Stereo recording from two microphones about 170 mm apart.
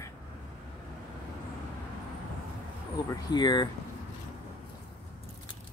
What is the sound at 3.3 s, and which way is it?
Speech, 25° left (ahead or behind).